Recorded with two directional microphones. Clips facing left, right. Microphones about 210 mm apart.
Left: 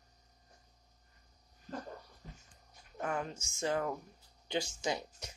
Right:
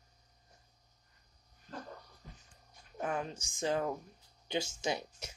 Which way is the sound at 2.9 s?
15° right (ahead or behind).